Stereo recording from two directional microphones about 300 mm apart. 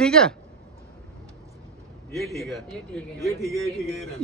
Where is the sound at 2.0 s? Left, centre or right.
Centre.